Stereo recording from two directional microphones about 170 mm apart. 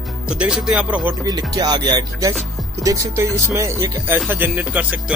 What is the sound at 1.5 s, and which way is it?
Music, 25° right (ahead or behind).